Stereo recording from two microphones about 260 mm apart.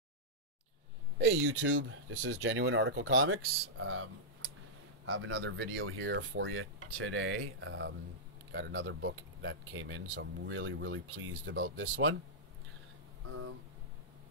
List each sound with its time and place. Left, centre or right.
1.1 s speech: right